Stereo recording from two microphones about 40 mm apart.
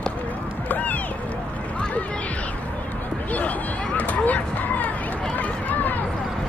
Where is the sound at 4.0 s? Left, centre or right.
Left.